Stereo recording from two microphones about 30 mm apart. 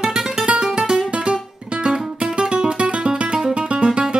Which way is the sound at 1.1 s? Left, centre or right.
Right.